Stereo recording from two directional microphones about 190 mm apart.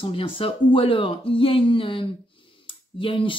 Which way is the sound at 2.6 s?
25° left (ahead or behind).